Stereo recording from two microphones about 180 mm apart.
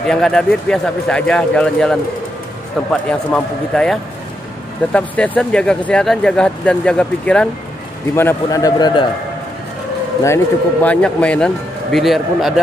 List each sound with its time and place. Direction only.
0.0 s a man's voice: 5° left (ahead or behind); by 9.0 s 25° left (ahead or behind)
10.2 s speech: 10° left (ahead or behind)